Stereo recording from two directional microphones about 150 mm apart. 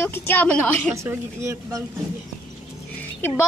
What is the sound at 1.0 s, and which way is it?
Speech, 20° right (ahead or behind).